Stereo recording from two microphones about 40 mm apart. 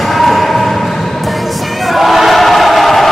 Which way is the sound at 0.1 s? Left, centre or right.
Centre.